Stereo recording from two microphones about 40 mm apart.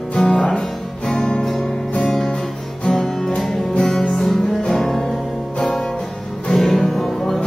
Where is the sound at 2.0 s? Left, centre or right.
Centre.